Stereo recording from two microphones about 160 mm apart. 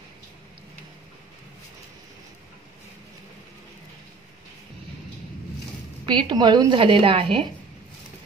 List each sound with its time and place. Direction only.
6.0 s a woman's voice: 30° right (ahead or behind)